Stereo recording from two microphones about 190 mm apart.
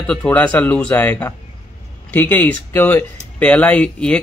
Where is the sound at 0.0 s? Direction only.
5° left (ahead or behind).